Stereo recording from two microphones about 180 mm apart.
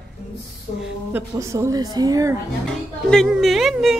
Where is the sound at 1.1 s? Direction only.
15° right (ahead or behind).